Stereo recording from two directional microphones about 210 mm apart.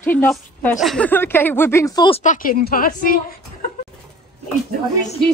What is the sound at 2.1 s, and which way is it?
A woman's voice, 40° left (ahead or behind).